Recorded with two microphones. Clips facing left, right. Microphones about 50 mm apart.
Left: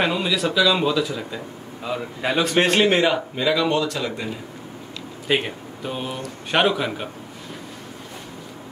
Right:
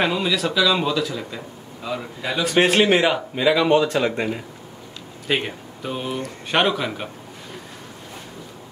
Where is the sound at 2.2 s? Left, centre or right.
Left.